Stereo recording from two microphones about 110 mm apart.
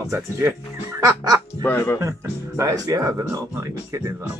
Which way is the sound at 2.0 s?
30° right (ahead or behind).